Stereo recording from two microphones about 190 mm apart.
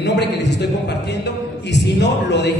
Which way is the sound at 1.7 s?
65° left (ahead or behind).